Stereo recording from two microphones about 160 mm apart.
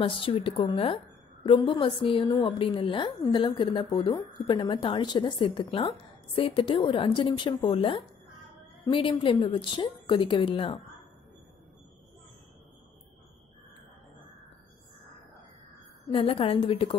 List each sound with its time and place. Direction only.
0.0 s a woman's voice: 35° left (ahead or behind)
16.1 s a woman's voice: 35° left (ahead or behind)